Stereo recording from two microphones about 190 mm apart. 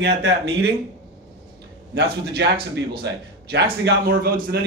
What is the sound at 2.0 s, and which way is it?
Speech, 60° right (ahead or behind).